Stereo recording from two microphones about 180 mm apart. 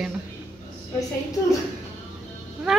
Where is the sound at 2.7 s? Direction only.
5° right (ahead or behind).